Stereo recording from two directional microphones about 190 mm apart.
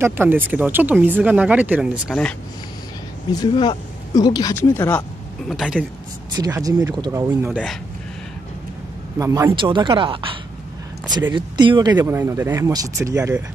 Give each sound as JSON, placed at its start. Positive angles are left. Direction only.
{"t": 0.0, "sound": "speech", "side_deg": -10}
{"t": 3.3, "sound": "speech", "side_deg": 20}
{"t": 5.5, "sound": "speech", "side_deg": 0}
{"t": 6.5, "sound": "speech", "side_deg": -15}
{"t": 9.2, "sound": "speech", "side_deg": -15}
{"t": 9.6, "sound": "speech", "side_deg": -25}
{"t": 11.3, "sound": "speech", "side_deg": -25}
{"t": 12.0, "sound": "speech", "side_deg": -10}